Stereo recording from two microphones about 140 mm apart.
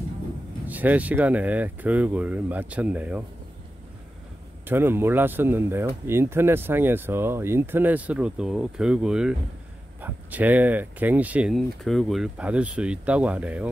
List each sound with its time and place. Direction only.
0.7 s speech: 10° right (ahead or behind)
4.6 s speech: 15° right (ahead or behind)
11.5 s speech: centre (ahead or behind)